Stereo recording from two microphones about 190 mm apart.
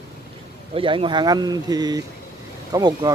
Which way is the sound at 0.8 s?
25° right (ahead or behind).